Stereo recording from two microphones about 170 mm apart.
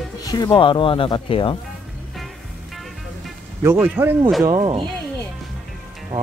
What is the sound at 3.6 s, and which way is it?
Speech, 15° right (ahead or behind).